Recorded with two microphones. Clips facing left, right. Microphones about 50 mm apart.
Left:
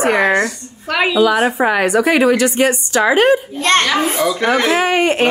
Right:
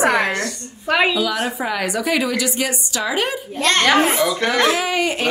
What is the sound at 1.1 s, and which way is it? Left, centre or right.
A woman's voice, left.